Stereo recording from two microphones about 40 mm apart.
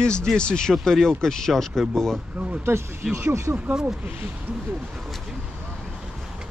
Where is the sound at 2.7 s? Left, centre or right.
Right.